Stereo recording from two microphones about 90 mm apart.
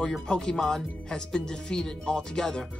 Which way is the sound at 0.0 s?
10° left (ahead or behind).